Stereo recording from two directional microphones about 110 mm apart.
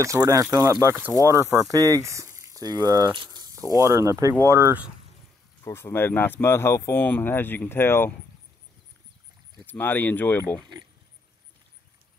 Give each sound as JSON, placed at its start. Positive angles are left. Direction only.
{"t": 0.0, "sound": "speech", "side_deg": -30}
{"t": 3.7, "sound": "speech", "side_deg": -30}
{"t": 5.6, "sound": "speech", "side_deg": 25}
{"t": 9.7, "sound": "speech", "side_deg": 20}